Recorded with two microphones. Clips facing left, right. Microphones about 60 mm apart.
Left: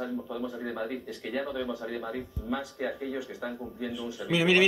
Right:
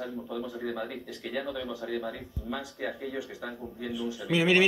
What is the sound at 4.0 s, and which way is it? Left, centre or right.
Speech, centre.